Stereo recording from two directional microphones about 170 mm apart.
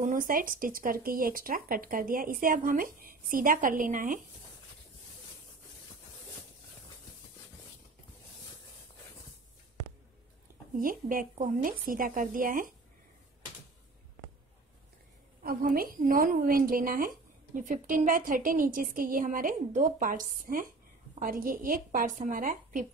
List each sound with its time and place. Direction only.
0.0 s speech: 50° right (ahead or behind)
10.8 s a woman's voice: 55° right (ahead or behind)
15.4 s a woman's voice: 60° right (ahead or behind)